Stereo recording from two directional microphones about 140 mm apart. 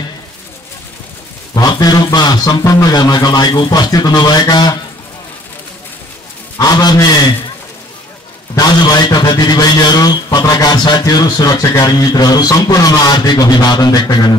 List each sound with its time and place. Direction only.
1.5 s a man's voice: 30° left (ahead or behind)
6.6 s a man's voice: 30° left (ahead or behind)
8.5 s a man's voice: 30° left (ahead or behind)